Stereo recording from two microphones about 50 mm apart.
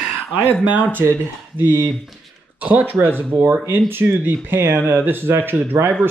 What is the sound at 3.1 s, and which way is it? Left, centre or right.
Speech, right.